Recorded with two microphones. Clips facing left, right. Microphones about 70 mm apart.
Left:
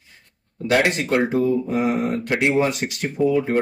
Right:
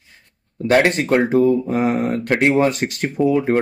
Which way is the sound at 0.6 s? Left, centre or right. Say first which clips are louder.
Right 4 dB; right.